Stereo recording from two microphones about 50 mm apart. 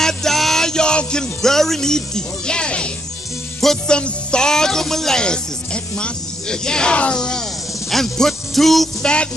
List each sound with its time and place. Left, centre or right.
0.0 s music: centre
9.0 s music: centre